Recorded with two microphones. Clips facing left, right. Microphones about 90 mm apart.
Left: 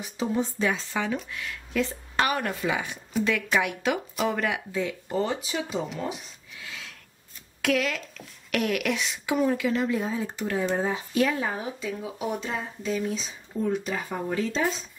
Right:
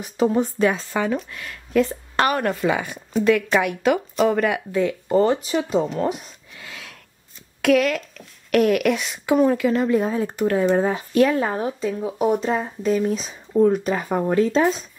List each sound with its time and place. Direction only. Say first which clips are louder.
0.0 s speech: right 8 dB; 55° right (ahead or behind)
5.9 s a sound: right 9 dB; 55° right (ahead or behind)
7.6 s speech: right 8 dB; 55° right (ahead or behind)